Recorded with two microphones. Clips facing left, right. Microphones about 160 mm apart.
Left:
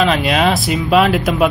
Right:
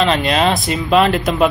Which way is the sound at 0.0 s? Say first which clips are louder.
Left 1 dB; 5° left (ahead or behind).